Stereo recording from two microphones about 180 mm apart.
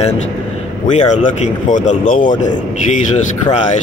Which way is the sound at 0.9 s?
40° left (ahead or behind).